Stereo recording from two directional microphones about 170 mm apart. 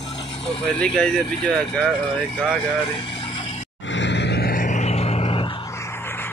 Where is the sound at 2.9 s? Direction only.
30° left (ahead or behind).